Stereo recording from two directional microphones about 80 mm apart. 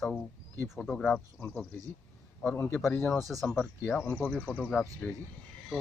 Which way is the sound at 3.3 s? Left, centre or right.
Centre.